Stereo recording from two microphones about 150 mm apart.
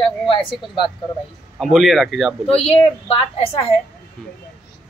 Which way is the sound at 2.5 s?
40° left (ahead or behind).